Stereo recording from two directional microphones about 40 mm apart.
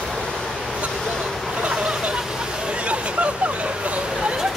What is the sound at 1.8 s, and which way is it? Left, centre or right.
Vehicle, right.